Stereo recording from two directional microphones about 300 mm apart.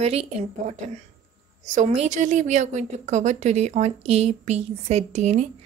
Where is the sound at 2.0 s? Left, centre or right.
Right.